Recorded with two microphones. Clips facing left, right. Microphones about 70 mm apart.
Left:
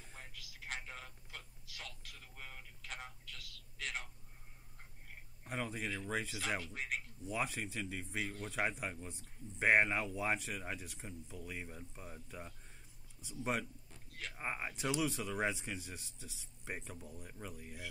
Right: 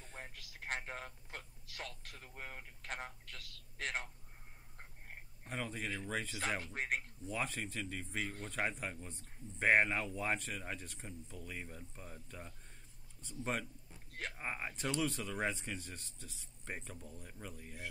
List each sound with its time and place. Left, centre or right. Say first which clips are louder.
0.2 s a sound: right 4 dB; right
5.4 s speech: left 1 dB; centre
6.6 s speech: right 3 dB; right
7.2 s speech: left 1 dB; centre